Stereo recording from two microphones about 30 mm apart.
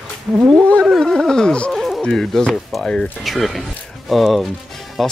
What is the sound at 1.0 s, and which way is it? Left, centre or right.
Speech, centre.